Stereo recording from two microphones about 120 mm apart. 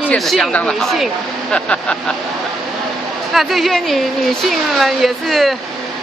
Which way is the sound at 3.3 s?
Centre (ahead or behind).